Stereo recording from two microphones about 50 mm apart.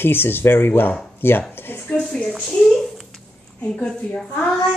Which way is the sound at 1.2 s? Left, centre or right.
Left.